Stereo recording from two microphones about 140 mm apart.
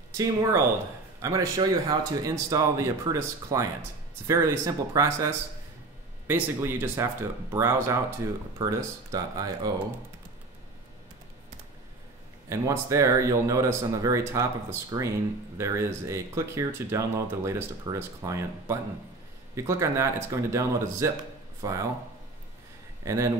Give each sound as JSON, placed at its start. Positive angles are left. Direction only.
{"t": 0.2, "sound": "speech", "side_deg": -20}
{"t": 12.4, "sound": "speech", "side_deg": -25}
{"t": 23.0, "sound": "speech", "side_deg": -25}